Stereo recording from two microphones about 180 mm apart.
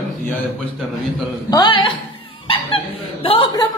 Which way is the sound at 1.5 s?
25° left (ahead or behind).